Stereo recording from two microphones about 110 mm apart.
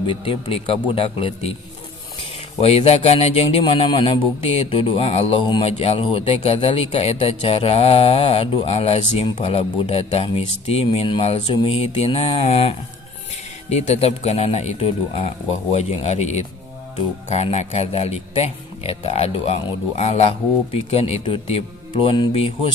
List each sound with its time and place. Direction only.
0.0 s speech: 55° left (ahead or behind)
2.6 s speech: 65° left (ahead or behind)
13.7 s a man's voice: 80° left; by 22.7 s 60° left (ahead or behind)